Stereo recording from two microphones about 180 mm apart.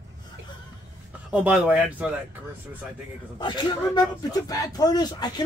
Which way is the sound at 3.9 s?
20° left (ahead or behind).